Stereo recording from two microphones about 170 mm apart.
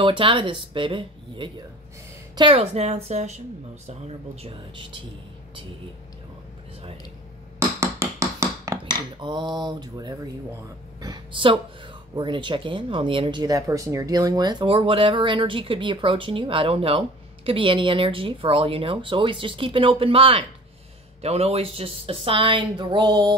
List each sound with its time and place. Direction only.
0.0 s speech: 30° right (ahead or behind)
4.4 s speech: 35° right (ahead or behind)
7.5 s a sound: 15° right (ahead or behind)
9.2 s a woman's voice: 25° right (ahead or behind)